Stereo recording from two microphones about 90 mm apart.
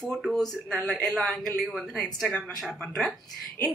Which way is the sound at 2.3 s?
10° left (ahead or behind).